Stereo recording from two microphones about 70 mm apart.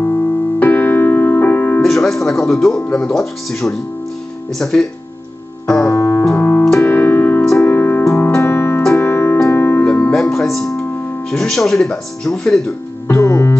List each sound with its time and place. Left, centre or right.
0.0 s music: left
1.8 s speech: centre
5.9 s keyboard: left
6.2 s keyboard: left
6.8 s music: left
10.1 s music: centre
11.2 s speech: centre
13.2 s music: left